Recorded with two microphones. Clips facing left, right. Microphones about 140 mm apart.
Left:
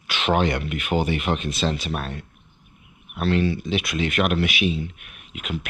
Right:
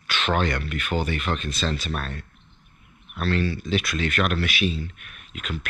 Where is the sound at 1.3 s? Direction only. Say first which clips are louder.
Left 3 dB; 60° left (ahead or behind).